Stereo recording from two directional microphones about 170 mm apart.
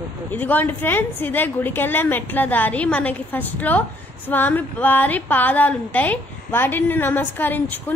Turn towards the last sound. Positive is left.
turn(degrees=10)  # may be behind; listen again after turning